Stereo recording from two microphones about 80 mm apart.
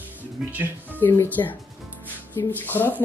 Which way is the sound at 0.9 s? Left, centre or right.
Left.